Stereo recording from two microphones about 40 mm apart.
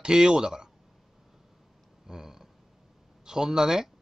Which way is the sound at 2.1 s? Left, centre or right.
Centre.